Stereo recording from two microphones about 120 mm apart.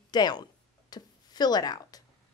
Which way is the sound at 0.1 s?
35° left (ahead or behind).